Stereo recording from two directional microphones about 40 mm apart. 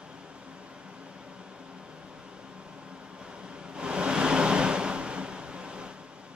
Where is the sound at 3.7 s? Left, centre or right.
Right.